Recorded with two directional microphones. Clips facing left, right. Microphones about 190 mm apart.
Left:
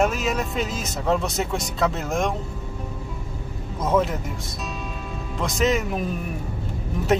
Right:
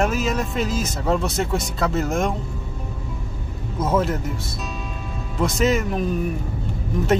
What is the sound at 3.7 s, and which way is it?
Speech, 5° right (ahead or behind).